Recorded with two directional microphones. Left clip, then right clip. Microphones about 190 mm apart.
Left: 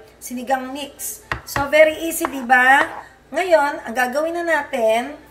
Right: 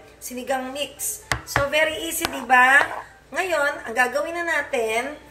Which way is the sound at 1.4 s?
30° left (ahead or behind).